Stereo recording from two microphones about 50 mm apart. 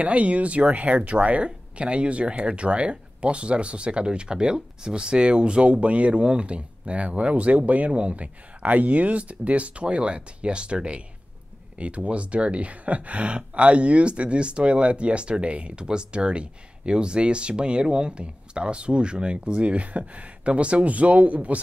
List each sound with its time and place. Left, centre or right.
0.0 s speech: right